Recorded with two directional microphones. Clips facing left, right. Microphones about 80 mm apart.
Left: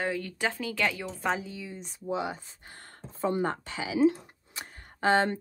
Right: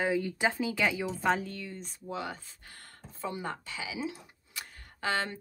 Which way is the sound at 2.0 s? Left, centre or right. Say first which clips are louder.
Left 6 dB; left.